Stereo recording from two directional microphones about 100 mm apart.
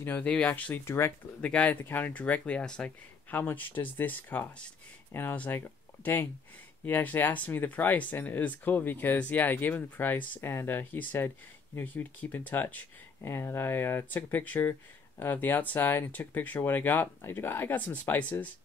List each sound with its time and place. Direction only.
0.0 s speech: 15° left (ahead or behind)
1.4 s speech: 10° left (ahead or behind)